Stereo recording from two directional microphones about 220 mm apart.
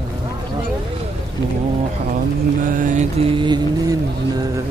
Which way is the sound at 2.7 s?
35° right (ahead or behind).